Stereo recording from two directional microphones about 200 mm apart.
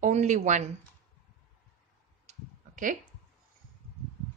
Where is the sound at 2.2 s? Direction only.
40° right (ahead or behind).